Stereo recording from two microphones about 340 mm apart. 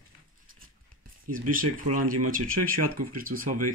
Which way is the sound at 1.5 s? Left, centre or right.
Right.